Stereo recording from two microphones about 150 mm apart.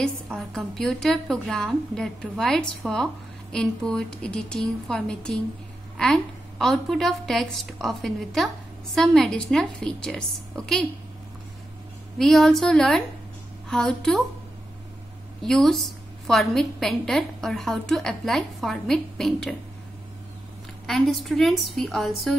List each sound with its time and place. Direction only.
0.0 s a woman's voice: 5° left (ahead or behind)
12.2 s a woman's voice: centre (ahead or behind)
15.4 s a woman's voice: 5° left (ahead or behind)
20.8 s a woman's voice: centre (ahead or behind)